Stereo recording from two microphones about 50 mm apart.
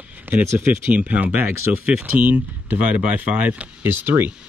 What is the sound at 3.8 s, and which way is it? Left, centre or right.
Speech, right.